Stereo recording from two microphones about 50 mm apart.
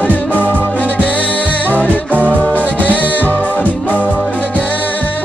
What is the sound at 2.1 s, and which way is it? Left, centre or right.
Music, right.